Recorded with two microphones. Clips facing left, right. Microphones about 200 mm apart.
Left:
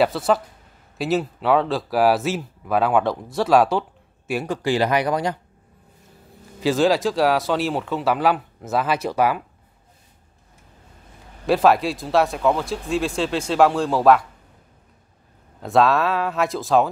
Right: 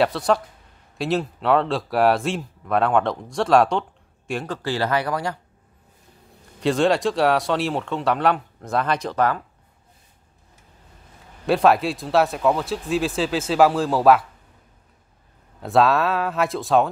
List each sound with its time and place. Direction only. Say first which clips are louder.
0.0 s speech: left 1 dB; centre (ahead or behind); by 5.4 s 20° left (ahead or behind)
6.6 s speech: left 1 dB; centre (ahead or behind)
11.4 s speech: left 1 dB; centre (ahead or behind)
15.6 s speech: even; centre (ahead or behind)